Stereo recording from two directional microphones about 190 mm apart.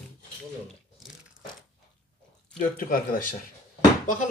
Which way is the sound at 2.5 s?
45° left (ahead or behind).